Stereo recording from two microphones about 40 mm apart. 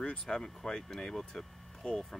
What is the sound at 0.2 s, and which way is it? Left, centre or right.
Speech, centre.